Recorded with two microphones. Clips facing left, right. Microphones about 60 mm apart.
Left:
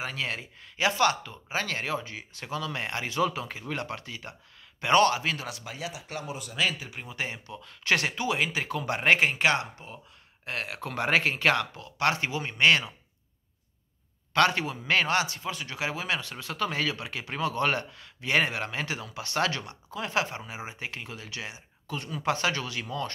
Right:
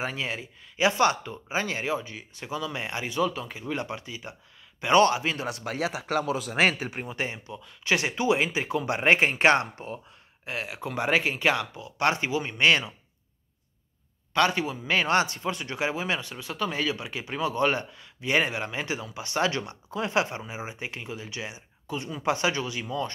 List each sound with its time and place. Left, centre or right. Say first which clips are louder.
0.0 s speech: right 2 dB; centre
4.9 s speech: right 2 dB; centre
5.5 s speech: right 7 dB; right
5.8 s speech: right 12 dB; right
7.0 s speech: right 3 dB; right
7.5 s speech: even; centre
8.2 s speech: right 4 dB; right
10.4 s speech: right 1 dB; centre
14.3 s speech: even; centre
15.0 s speech: right 3 dB; right; by 19.6 s centre
19.6 s speech: right 4 dB; right
20.4 s speech: right 2 dB; centre